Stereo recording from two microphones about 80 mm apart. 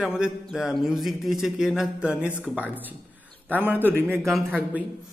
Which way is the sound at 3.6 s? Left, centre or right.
Right.